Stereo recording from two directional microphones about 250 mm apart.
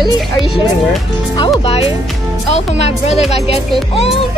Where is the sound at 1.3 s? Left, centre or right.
Centre.